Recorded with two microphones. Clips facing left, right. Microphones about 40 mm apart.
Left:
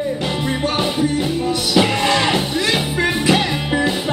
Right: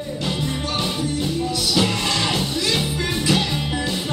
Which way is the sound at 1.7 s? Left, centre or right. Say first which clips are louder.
Left 6 dB; left.